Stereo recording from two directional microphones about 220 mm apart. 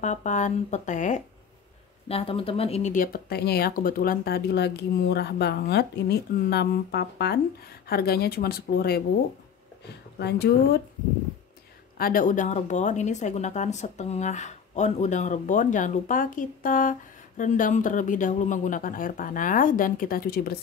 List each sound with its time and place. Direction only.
0.0 s speech: 35° left (ahead or behind)
12.0 s speech: 40° left (ahead or behind)